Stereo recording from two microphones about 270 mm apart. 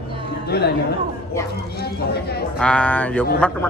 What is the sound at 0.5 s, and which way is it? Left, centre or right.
Speech, left.